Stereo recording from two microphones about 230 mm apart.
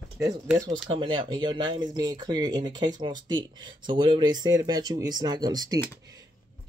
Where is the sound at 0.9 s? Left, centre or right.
Right.